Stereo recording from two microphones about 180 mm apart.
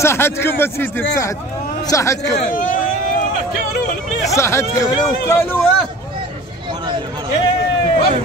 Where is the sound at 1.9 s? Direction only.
15° left (ahead or behind).